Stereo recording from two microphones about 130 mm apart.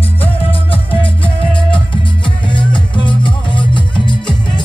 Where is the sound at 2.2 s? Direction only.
40° left (ahead or behind).